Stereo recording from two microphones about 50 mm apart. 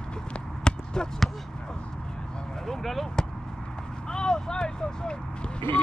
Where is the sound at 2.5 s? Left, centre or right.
Centre.